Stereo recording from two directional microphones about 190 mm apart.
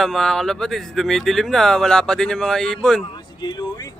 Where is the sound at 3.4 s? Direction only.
20° left (ahead or behind).